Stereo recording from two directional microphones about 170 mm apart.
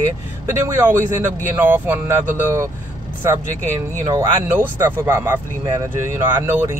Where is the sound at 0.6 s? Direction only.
15° right (ahead or behind).